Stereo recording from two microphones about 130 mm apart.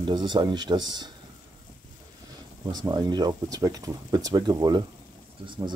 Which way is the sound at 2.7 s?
30° right (ahead or behind).